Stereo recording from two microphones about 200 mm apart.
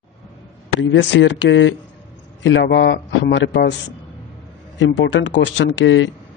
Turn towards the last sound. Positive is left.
turn(degrees=70)  # may be behind; listen again after turning